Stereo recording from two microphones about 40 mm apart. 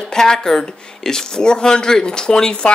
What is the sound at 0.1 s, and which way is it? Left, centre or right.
A man's voice, centre.